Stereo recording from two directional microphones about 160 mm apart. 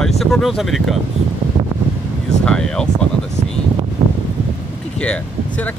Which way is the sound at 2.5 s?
5° left (ahead or behind).